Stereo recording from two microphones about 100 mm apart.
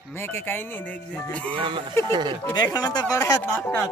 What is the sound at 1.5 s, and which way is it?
Speech, 50° right (ahead or behind).